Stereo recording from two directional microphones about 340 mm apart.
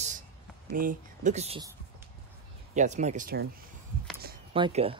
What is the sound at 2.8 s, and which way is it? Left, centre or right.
Speech, right.